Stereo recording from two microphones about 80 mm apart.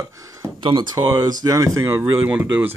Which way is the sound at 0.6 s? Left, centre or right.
Right.